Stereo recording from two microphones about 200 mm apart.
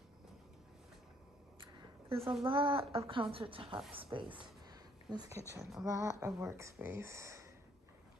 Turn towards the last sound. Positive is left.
turn(degrees=-15)  # may be behind; listen again after turning